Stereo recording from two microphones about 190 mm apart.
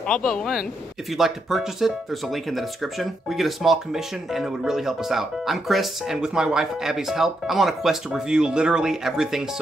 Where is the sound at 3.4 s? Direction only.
Centre (ahead or behind).